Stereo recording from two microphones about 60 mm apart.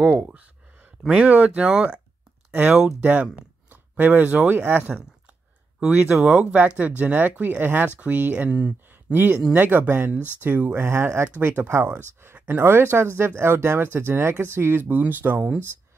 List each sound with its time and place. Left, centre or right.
1.0 s speech: centre
5.8 s speech: right
8.5 s speech: centre
9.1 s speech: right